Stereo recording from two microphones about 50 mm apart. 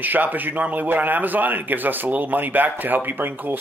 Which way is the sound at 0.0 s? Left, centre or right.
Right.